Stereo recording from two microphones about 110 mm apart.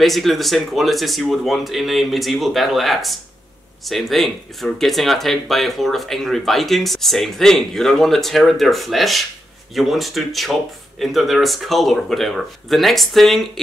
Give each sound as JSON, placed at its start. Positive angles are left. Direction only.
{"t": 0.0, "sound": "speech", "side_deg": 0}